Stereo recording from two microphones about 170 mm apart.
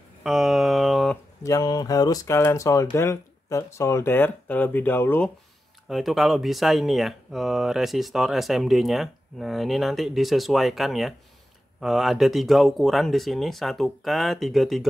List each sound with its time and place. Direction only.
0.2 s a sound: 5° right (ahead or behind)
1.4 s speech: 20° left (ahead or behind)
5.9 s speech: centre (ahead or behind)